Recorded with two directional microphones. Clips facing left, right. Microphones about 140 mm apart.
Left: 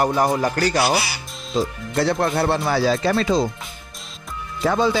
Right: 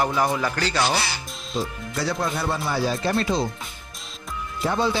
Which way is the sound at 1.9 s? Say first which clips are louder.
Left 6 dB; 60° left (ahead or behind).